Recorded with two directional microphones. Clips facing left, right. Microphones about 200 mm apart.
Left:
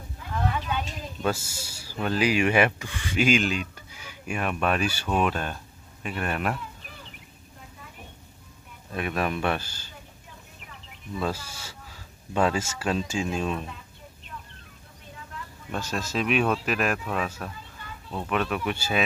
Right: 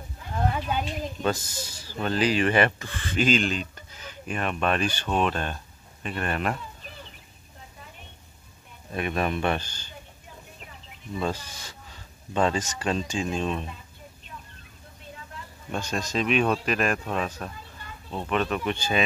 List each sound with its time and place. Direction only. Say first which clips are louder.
0.5 s a sound: right 2 dB; 40° right (ahead or behind)
1.2 s speech: left 1 dB; 10° left (ahead or behind)
8.9 s speech: right 1 dB; centre (ahead or behind)
11.1 s speech: even; 5° left (ahead or behind)
15.7 s speech: right 1 dB; 5° left (ahead or behind)